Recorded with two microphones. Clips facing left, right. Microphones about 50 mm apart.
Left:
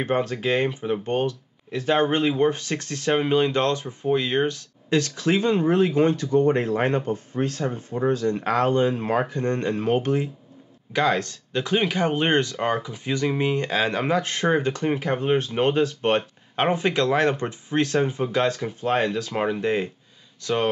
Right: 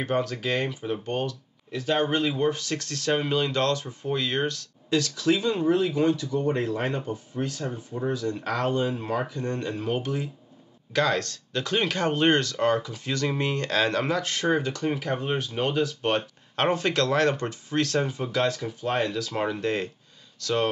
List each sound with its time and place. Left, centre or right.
0.0 s speech: left
8.4 s speech: left
10.9 s speech: centre; by 16.3 s left
16.5 s speech: centre
19.3 s speech: left